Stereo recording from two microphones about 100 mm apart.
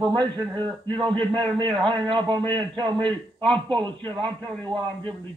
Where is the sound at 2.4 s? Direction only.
15° left (ahead or behind).